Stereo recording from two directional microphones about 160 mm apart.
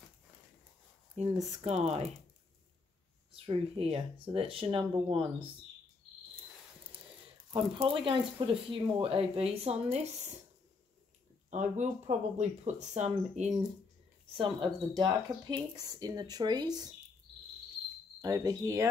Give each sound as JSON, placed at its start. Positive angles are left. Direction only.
{"t": 1.2, "sound": "speech", "side_deg": -45}
{"t": 3.3, "sound": "speech", "side_deg": -35}
{"t": 7.5, "sound": "speech", "side_deg": -35}
{"t": 11.5, "sound": "speech", "side_deg": -45}
{"t": 14.3, "sound": "speech", "side_deg": -35}
{"t": 18.2, "sound": "speech", "side_deg": -20}